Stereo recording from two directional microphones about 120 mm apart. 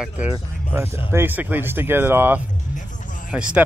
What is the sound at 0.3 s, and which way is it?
Speech, 20° right (ahead or behind).